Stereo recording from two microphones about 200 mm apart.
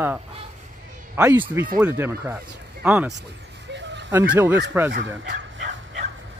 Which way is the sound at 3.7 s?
60° right (ahead or behind).